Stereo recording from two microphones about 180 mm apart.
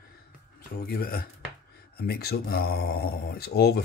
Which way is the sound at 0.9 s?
55° left (ahead or behind).